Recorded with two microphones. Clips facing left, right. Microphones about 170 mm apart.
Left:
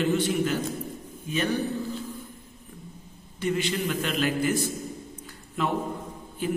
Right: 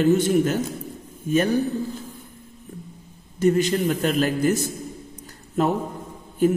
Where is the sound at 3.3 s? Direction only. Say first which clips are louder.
Right 8 dB; 45° right (ahead or behind).